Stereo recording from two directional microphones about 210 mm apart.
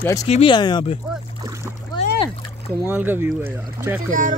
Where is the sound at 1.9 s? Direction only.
20° left (ahead or behind).